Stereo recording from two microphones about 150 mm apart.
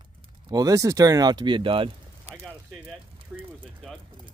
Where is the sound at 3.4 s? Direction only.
35° right (ahead or behind).